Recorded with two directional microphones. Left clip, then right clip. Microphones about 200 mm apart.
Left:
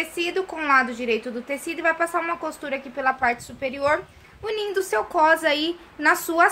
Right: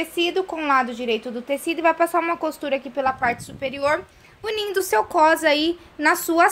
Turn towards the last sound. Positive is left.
turn(degrees=-30)  # may be behind; listen again after turning